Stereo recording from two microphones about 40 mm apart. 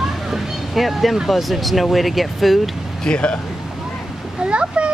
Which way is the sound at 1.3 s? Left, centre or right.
Centre.